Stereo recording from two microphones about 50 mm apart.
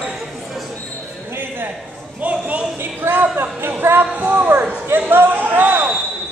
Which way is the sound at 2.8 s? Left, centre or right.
Right.